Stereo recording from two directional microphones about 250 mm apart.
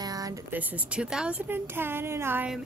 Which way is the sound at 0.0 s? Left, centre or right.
Centre.